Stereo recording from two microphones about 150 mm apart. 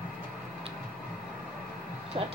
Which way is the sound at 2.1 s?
35° right (ahead or behind).